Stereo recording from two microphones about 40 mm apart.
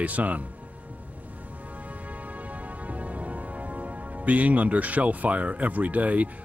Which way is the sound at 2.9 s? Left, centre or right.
Right.